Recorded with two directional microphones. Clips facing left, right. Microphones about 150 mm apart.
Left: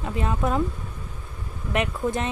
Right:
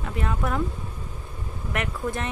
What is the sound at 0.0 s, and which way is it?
Speech, 20° left (ahead or behind).